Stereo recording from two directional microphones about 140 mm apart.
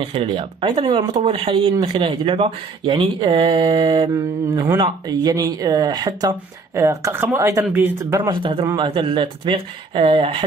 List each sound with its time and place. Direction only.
0.0 s speech: 40° right (ahead or behind); by 8.3 s 20° right (ahead or behind)
8.3 s speech: 35° right (ahead or behind)